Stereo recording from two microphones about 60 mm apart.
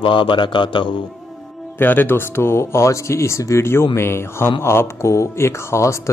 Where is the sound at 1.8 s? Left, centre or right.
Left.